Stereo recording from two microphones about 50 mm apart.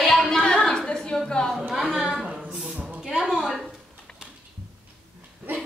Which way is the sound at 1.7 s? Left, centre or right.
Centre.